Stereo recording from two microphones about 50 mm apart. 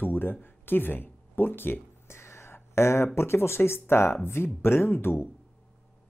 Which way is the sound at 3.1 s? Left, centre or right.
Left.